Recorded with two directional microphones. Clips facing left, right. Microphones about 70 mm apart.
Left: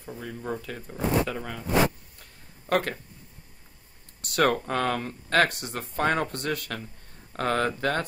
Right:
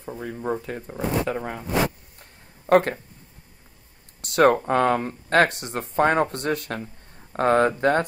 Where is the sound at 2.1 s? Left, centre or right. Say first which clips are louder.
Right 2 dB; right.